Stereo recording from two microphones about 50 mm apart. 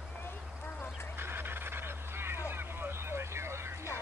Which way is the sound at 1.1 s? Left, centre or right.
Right.